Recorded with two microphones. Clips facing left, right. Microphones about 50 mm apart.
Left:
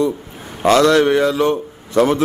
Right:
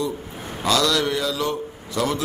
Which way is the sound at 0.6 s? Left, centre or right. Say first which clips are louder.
Left 9 dB; left.